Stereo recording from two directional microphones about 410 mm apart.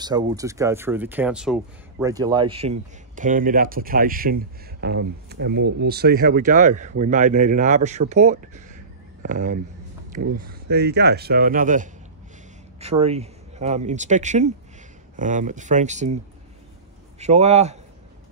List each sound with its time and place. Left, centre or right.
0.0 s speech: centre
17.2 s speech: centre